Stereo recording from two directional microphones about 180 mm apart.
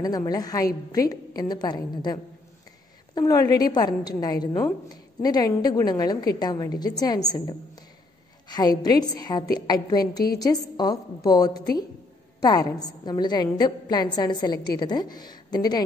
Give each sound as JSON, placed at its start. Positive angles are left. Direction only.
{"t": 0.0, "sound": "a woman's voice", "side_deg": 20}
{"t": 3.2, "sound": "a woman's voice", "side_deg": 20}